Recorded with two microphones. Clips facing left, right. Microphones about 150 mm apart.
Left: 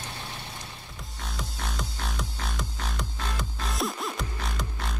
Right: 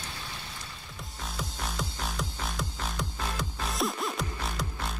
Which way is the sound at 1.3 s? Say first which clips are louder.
Even; centre (ahead or behind).